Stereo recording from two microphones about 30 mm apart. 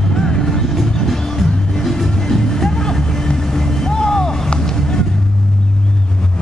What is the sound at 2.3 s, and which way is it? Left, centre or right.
Music, centre.